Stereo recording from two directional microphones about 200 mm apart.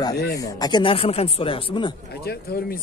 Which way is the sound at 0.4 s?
20° left (ahead or behind).